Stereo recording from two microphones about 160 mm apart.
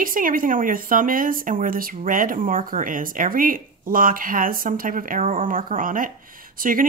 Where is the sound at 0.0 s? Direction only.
60° right (ahead or behind).